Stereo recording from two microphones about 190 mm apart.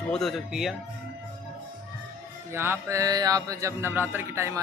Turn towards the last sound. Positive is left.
turn(degrees=-15)  # may be behind; listen again after turning